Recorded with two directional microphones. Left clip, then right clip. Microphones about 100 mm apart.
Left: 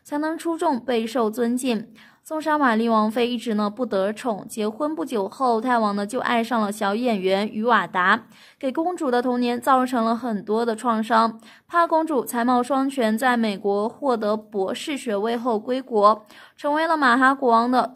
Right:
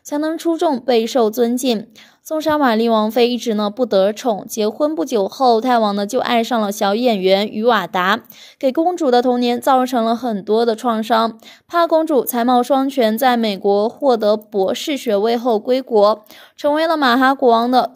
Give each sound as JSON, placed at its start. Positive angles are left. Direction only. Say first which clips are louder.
{"t": 0.3, "sound": "speech", "louder": "right 6 dB", "side_deg": -30}